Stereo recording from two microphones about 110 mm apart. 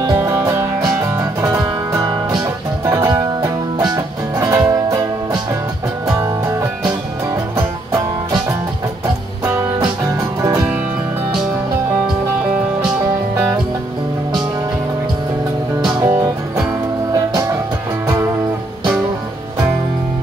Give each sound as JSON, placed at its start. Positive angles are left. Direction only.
{"t": 0.0, "sound": "music", "side_deg": -40}
{"t": 0.3, "sound": "music", "side_deg": -25}
{"t": 9.4, "sound": "music", "side_deg": -25}
{"t": 16.1, "sound": "music", "side_deg": -30}